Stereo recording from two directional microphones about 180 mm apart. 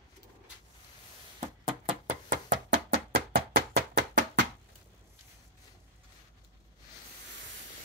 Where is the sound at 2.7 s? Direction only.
55° right (ahead or behind).